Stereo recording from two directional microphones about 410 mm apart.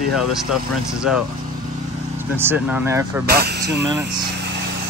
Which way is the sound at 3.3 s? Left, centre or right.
Right.